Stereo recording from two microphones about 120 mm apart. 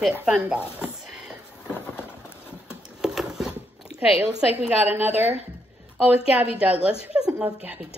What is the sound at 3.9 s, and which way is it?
A woman's voice, 15° right (ahead or behind).